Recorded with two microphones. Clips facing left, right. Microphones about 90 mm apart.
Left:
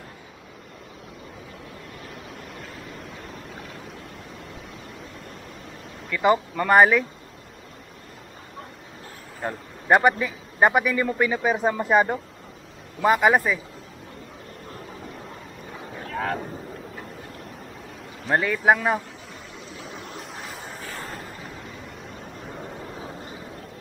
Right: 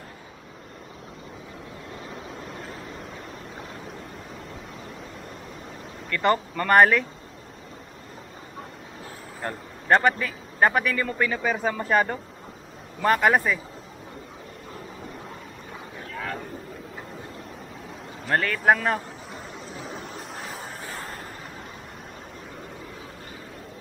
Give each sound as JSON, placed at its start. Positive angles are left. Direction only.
{"t": 6.0, "sound": "speech", "side_deg": 5}
{"t": 9.4, "sound": "a man's voice", "side_deg": 5}
{"t": 16.1, "sound": "a sound", "side_deg": 40}
{"t": 18.2, "sound": "speech", "side_deg": 5}
{"t": 19.7, "sound": "vehicle", "side_deg": 0}
{"t": 20.9, "sound": "a sound", "side_deg": 0}